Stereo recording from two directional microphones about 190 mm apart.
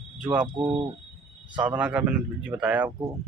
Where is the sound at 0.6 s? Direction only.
25° right (ahead or behind).